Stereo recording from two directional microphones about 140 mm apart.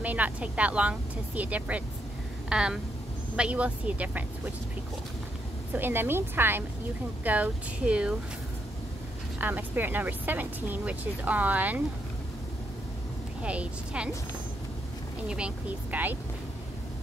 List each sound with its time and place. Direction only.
0.0 s speech: 10° right (ahead or behind)
5.8 s speech: 15° right (ahead or behind)
9.4 s speech: 15° right (ahead or behind)
13.4 s speech: 10° right (ahead or behind)
15.2 s speech: 10° right (ahead or behind)